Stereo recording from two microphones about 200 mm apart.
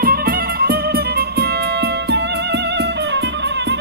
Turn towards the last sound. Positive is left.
turn(degrees=-60)  # may be behind; listen again after turning